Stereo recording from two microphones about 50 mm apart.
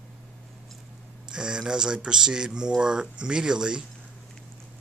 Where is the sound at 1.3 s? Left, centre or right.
Centre.